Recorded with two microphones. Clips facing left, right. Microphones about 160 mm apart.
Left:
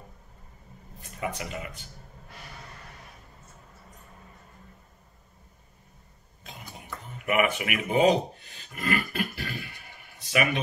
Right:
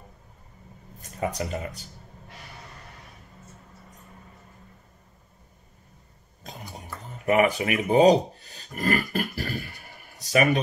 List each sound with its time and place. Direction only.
1.0 s speech: 40° right (ahead or behind)
6.5 s a sound: 40° right (ahead or behind)
6.8 s speech: 35° right (ahead or behind)